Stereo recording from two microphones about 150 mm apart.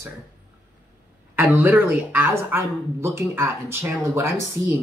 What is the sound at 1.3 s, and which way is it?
Speech, 10° right (ahead or behind).